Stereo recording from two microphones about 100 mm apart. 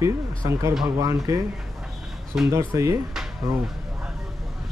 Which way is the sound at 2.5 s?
30° right (ahead or behind).